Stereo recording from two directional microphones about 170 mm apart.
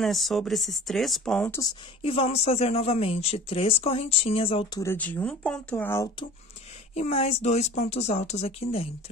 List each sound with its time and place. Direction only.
0.0 s speech: centre (ahead or behind)
2.0 s speech: 35° left (ahead or behind)
4.7 s speech: 10° left (ahead or behind)
7.0 s speech: 40° left (ahead or behind)